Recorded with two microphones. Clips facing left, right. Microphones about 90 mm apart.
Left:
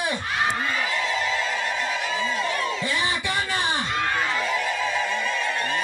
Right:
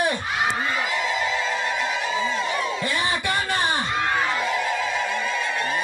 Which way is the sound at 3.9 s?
15° right (ahead or behind).